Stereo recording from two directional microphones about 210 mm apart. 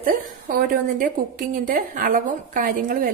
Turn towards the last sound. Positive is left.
turn(degrees=-40)  # may be behind; listen again after turning